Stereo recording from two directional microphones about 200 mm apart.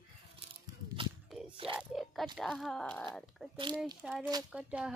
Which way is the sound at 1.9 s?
Centre (ahead or behind).